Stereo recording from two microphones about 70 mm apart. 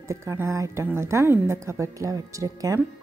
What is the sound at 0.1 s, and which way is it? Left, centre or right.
A woman's voice, right.